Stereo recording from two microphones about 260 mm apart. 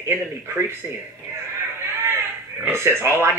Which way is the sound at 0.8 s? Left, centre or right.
Centre.